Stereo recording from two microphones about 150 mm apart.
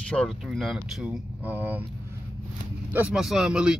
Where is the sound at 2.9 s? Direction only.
5° right (ahead or behind).